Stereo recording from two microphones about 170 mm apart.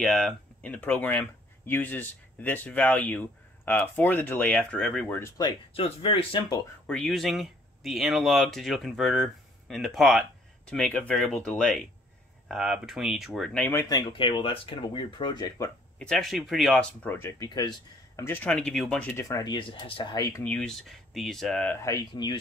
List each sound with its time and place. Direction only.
0.0 s speech: 5° left (ahead or behind)
5.8 s speech: 35° left (ahead or behind)
6.9 s speech: centre (ahead or behind); by 15.7 s 20° left (ahead or behind)
16.0 s speech: centre (ahead or behind)
19.2 s speech: 20° left (ahead or behind)
20.4 s speech: 5° left (ahead or behind); by 22.4 s 25° left (ahead or behind)